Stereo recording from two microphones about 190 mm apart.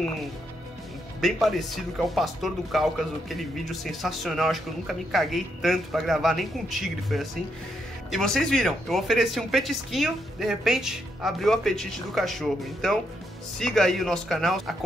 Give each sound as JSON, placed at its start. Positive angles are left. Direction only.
{"t": 1.2, "sound": "speech", "side_deg": 0}